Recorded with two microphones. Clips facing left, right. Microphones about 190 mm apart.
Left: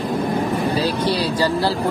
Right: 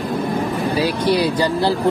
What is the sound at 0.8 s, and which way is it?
Speech, 15° right (ahead or behind).